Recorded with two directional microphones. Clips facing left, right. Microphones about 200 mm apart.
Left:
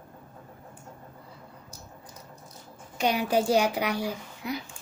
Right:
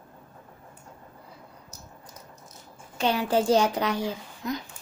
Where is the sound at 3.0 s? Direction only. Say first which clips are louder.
Right 1 dB; 15° left (ahead or behind).